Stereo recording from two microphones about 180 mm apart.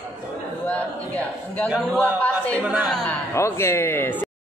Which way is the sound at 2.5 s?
5° right (ahead or behind).